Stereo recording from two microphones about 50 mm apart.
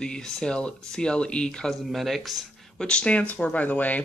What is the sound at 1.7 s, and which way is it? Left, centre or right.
Speech, centre.